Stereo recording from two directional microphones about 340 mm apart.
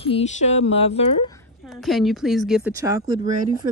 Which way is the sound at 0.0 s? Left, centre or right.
Centre.